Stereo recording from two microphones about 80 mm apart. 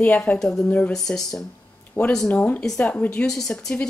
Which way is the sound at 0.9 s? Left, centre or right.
Centre.